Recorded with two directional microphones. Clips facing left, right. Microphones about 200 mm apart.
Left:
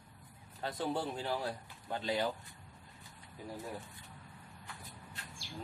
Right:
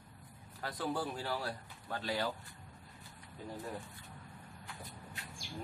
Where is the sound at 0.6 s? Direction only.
25° left (ahead or behind).